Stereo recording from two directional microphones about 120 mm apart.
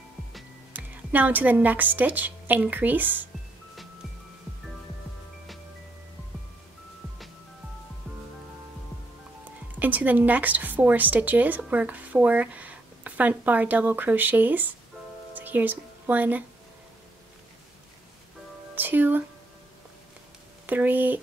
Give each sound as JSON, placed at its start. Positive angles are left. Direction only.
{"t": 0.7, "sound": "a woman's voice", "side_deg": -15}
{"t": 9.4, "sound": "speech", "side_deg": -15}
{"t": 15.3, "sound": "music", "side_deg": -15}
{"t": 18.8, "sound": "speech", "side_deg": -15}
{"t": 20.6, "sound": "speech", "side_deg": -15}